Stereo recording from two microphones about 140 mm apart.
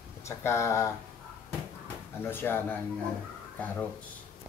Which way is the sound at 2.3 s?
15° left (ahead or behind).